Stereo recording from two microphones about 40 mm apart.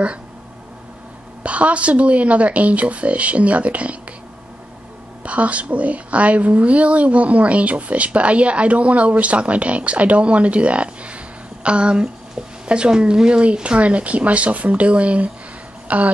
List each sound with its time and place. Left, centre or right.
1.4 s a woman's voice: right
5.2 s a woman's voice: right